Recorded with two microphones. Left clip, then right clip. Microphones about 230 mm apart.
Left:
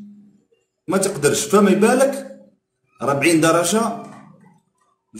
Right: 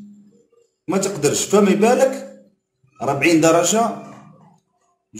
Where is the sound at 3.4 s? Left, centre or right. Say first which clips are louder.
Right 4 dB; left.